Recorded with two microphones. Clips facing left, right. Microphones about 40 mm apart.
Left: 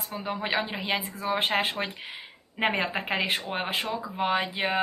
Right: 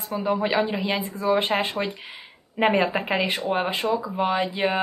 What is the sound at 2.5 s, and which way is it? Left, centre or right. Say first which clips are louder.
A woman's voice: right 6 dB; centre.